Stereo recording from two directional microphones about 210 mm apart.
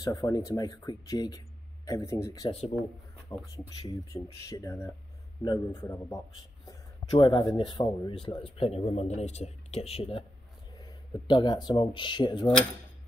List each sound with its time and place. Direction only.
0.0 s speech: 15° left (ahead or behind)